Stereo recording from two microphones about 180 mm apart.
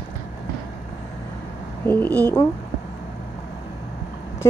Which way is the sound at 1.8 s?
10° left (ahead or behind).